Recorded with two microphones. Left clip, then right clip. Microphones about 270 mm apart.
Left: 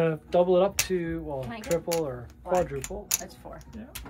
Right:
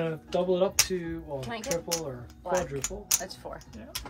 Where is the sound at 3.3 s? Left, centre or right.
Right.